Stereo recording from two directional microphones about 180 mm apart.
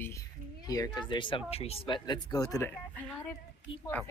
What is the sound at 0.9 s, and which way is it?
Speech, 25° left (ahead or behind).